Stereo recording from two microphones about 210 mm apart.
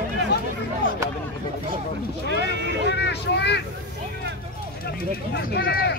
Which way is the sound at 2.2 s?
55° right (ahead or behind).